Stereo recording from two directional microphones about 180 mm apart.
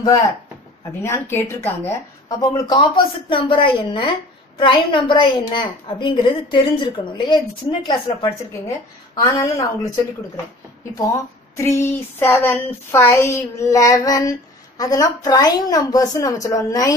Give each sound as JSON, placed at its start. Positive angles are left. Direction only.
{"t": 1.0, "sound": "a woman's voice", "side_deg": 15}
{"t": 11.5, "sound": "a woman's voice", "side_deg": 15}